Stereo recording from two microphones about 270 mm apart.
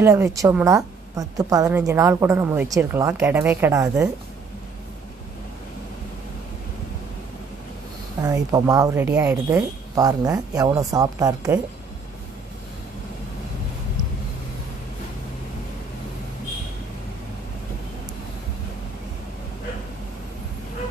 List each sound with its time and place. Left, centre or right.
0.0 s a woman's voice: centre
8.2 s a woman's voice: centre